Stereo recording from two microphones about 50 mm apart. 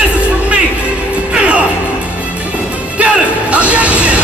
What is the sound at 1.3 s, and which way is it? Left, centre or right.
Music, right.